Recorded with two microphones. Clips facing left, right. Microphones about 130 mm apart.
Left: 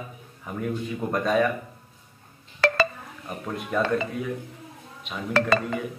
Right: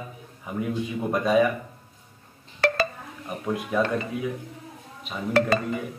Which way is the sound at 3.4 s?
5° right (ahead or behind).